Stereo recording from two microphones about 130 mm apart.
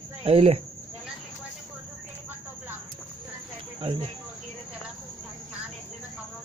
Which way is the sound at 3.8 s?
35° right (ahead or behind).